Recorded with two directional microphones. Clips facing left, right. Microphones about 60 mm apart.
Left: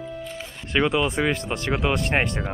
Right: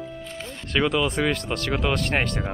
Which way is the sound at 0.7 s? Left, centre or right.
Centre.